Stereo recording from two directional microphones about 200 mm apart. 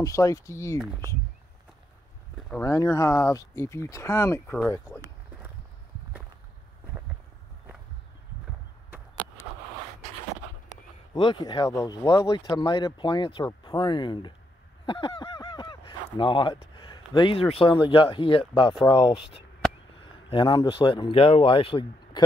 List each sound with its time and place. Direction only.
0.0 s speech: 15° left (ahead or behind)
2.6 s speech: 15° left (ahead or behind)
11.1 s speech: 25° left (ahead or behind)